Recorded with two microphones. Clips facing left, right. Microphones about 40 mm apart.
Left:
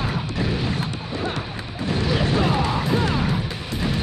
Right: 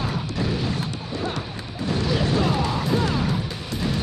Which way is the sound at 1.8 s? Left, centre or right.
Left.